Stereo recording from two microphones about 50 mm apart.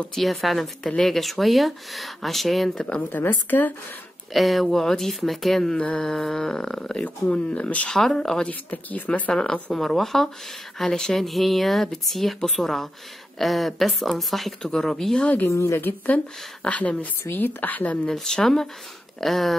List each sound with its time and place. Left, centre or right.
0.1 s speech: centre
3.0 s speech: left
4.3 s speech: centre
5.8 s a woman's voice: centre
6.0 s speech: centre
7.9 s speech: centre
8.5 s speech: left
9.3 s speech: centre
15.5 s a woman's voice: left
16.6 s a woman's voice: left
17.3 s speech: left
18.0 s speech: centre